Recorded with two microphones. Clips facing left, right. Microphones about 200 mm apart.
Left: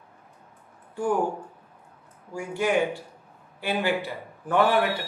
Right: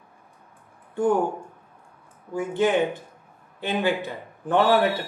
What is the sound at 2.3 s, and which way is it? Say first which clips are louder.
A man's voice: right 3 dB; 20° right (ahead or behind).